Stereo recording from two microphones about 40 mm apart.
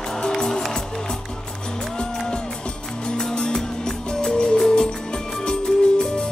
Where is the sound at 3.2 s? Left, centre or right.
Centre.